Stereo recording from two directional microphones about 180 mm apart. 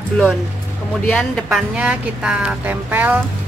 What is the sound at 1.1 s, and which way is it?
Speech, 5° left (ahead or behind).